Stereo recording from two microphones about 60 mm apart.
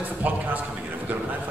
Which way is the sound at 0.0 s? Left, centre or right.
Right.